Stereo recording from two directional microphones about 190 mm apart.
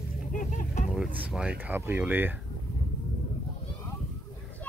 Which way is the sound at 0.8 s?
5° right (ahead or behind).